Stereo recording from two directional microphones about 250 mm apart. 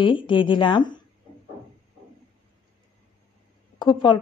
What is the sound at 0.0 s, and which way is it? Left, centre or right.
Speech, centre.